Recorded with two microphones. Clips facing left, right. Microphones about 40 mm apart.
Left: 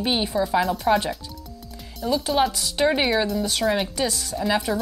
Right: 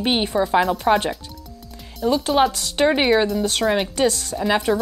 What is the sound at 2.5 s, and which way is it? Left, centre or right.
Speech, right.